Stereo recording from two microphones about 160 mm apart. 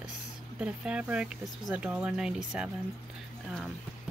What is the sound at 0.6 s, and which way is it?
Speech, 5° right (ahead or behind).